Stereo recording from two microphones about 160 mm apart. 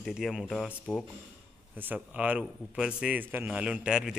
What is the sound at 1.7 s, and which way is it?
Speech, 10° right (ahead or behind).